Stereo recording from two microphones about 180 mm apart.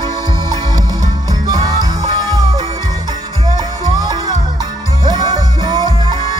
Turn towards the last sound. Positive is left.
turn(degrees=-25)  # may be behind; listen again after turning